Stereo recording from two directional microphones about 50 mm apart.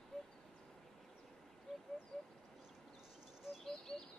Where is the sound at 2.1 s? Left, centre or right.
Centre.